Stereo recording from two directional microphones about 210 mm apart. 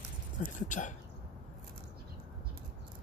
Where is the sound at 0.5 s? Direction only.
35° left (ahead or behind).